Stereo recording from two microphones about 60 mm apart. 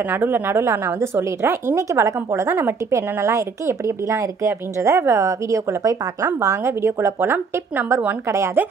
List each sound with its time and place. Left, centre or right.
0.0 s a woman's voice: right
6.2 s a woman's voice: right
8.6 s speech: right